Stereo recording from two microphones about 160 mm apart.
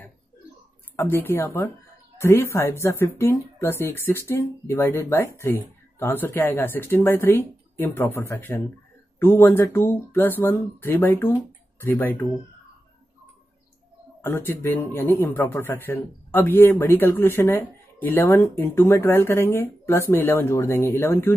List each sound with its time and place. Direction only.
0.9 s speech: 10° left (ahead or behind)
14.2 s speech: 15° left (ahead or behind)